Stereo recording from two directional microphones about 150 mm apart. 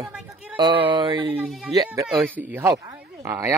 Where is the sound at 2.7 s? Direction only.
25° right (ahead or behind).